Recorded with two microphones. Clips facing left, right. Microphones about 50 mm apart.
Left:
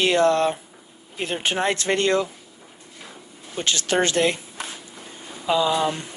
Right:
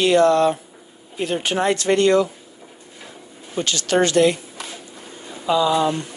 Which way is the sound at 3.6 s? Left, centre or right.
Left.